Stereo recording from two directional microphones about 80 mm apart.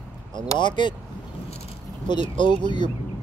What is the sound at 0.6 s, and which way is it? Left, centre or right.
Speech, left.